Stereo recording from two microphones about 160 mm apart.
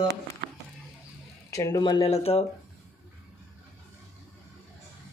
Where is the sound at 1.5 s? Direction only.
20° left (ahead or behind).